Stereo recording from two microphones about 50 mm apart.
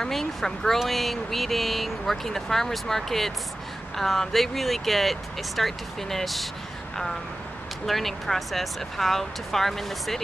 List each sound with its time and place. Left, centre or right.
0.0 s speech: centre
7.8 s speech: centre